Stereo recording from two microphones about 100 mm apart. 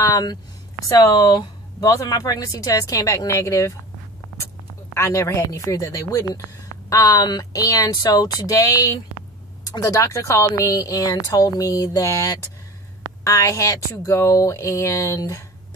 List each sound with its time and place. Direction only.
0.0 s speech: 40° left (ahead or behind)
4.9 s speech: 30° left (ahead or behind)